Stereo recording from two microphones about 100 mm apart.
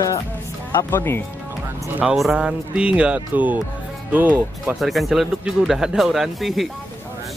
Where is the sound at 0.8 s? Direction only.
25° left (ahead or behind).